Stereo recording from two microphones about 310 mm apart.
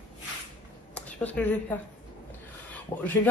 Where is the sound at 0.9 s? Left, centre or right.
Centre.